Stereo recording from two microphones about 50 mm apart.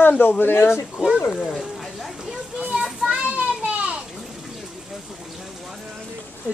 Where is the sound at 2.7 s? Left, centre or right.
Centre.